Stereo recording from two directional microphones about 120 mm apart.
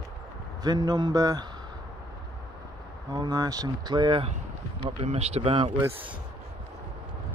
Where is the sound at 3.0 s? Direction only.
35° right (ahead or behind).